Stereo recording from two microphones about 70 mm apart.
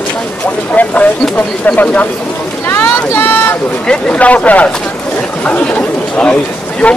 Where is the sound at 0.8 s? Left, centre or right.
Left.